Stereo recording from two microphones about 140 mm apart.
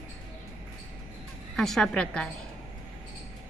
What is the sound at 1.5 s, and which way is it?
Speech, 5° left (ahead or behind).